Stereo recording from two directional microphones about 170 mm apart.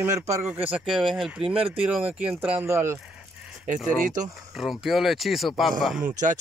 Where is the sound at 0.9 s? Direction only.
Centre (ahead or behind).